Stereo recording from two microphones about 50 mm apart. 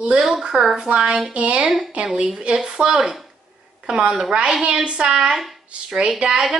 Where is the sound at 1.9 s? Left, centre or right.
Right.